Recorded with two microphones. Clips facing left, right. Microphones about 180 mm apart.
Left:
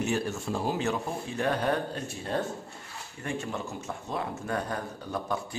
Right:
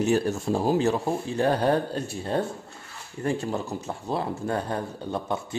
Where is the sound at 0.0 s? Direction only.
35° right (ahead or behind).